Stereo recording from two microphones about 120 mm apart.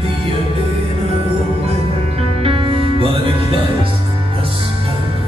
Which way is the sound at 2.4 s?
50° right (ahead or behind).